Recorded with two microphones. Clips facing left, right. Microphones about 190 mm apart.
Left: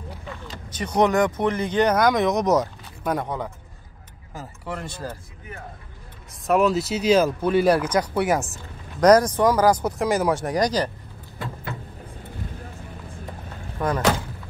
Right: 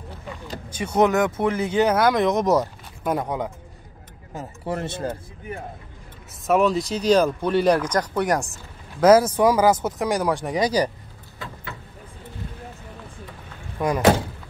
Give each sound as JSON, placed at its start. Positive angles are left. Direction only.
{"t": 0.3, "sound": "speech", "side_deg": -10}
{"t": 4.3, "sound": "speech", "side_deg": -25}
{"t": 6.4, "sound": "speech", "side_deg": 0}
{"t": 13.7, "sound": "speech", "side_deg": -10}